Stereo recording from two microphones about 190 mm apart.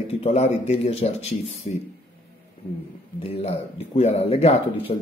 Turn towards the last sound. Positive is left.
turn(degrees=30)  # may be behind; listen again after turning